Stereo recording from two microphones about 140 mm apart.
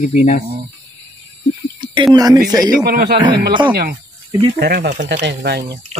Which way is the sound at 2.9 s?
90° right.